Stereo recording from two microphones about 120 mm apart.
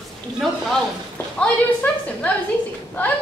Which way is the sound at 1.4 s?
10° left (ahead or behind).